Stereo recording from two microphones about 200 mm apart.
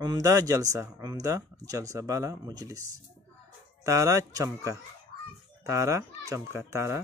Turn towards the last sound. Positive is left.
turn(degrees=-15)  # may be behind; listen again after turning